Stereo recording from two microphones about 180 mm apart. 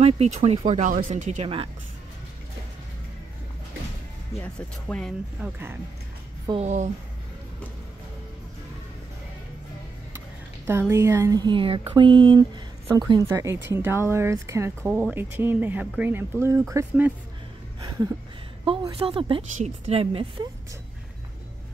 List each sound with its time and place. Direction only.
0.0 s speech: 35° right (ahead or behind)
4.4 s speech: 5° left (ahead or behind)
5.4 s speech: 10° right (ahead or behind)
6.6 s speech: 40° right (ahead or behind)
10.7 s speech: 15° right (ahead or behind)
18.6 s speech: 30° right (ahead or behind)